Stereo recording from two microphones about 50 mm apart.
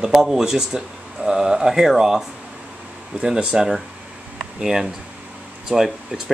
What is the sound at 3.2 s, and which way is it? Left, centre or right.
Speech, centre.